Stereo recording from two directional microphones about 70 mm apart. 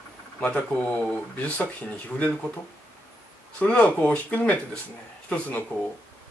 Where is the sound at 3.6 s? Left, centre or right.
Centre.